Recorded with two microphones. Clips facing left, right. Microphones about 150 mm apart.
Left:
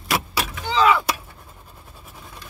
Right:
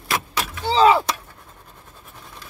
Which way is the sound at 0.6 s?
35° right (ahead or behind).